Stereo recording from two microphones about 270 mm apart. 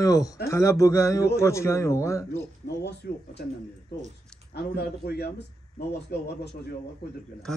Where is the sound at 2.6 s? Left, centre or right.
Left.